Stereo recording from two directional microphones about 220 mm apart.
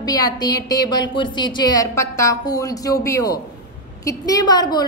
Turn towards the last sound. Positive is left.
turn(degrees=20)  # may be behind; listen again after turning